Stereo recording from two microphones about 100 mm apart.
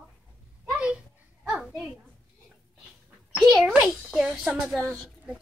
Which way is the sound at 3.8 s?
5° right (ahead or behind).